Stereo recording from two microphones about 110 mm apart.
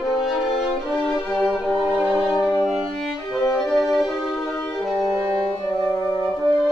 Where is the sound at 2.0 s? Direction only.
10° right (ahead or behind).